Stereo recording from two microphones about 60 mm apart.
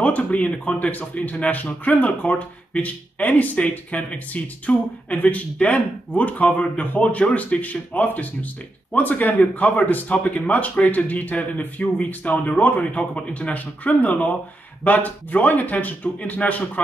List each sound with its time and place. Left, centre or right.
0.0 s speech: left